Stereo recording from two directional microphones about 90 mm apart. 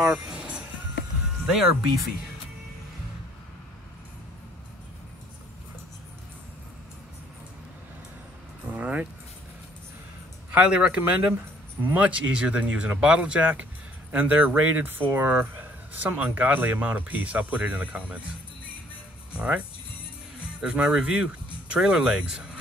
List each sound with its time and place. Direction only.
0.0 s music: 10° right (ahead or behind)
1.5 s speech: 5° right (ahead or behind)
8.6 s music: 15° right (ahead or behind)
10.5 s speech: 10° right (ahead or behind)
19.3 s speech: 15° right (ahead or behind)